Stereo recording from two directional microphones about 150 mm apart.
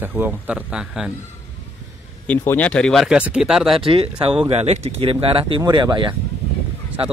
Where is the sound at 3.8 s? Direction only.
40° right (ahead or behind).